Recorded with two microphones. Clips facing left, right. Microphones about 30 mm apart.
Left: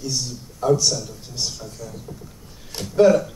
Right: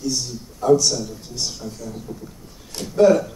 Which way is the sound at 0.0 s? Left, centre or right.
Centre.